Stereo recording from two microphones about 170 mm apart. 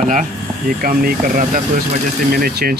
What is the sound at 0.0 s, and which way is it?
Speech, 50° right (ahead or behind).